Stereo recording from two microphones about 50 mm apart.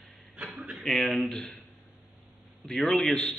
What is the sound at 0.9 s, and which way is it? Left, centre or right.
Speech, centre.